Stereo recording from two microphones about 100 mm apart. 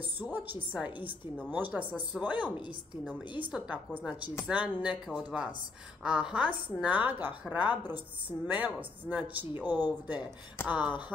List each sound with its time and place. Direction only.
0.2 s a woman's voice: 20° right (ahead or behind)
3.5 s a woman's voice: 10° right (ahead or behind)